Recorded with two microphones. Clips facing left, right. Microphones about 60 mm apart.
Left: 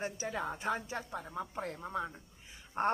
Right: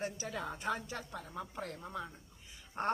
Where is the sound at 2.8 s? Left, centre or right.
Left.